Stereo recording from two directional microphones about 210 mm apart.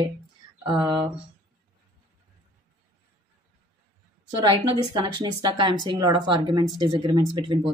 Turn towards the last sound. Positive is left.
turn(degrees=-20)  # may be behind; listen again after turning